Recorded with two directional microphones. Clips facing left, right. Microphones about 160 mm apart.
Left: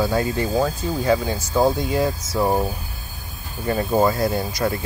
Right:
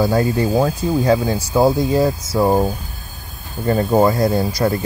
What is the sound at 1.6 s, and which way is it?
Speech, 35° right (ahead or behind).